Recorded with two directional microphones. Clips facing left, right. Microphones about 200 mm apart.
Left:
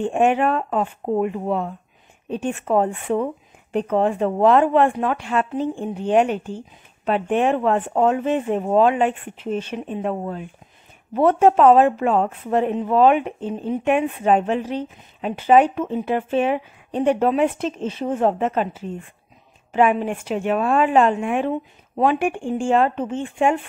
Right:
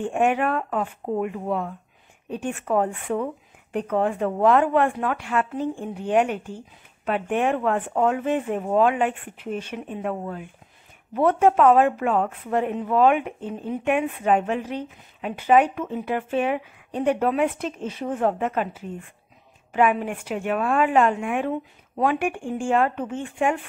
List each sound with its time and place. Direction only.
0.0 s a woman's voice: 25° left (ahead or behind)